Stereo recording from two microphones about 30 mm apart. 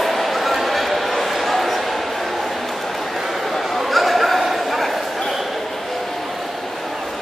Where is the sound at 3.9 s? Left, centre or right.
Centre.